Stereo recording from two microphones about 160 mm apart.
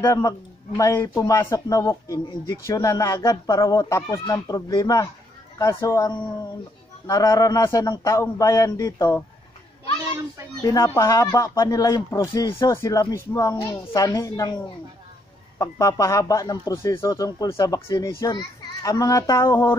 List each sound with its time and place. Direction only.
0.0 s a man's voice: 20° left (ahead or behind)
10.6 s a man's voice: 20° left (ahead or behind)
15.6 s a man's voice: 20° left (ahead or behind)